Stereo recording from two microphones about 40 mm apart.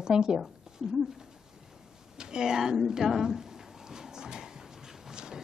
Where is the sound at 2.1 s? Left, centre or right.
Centre.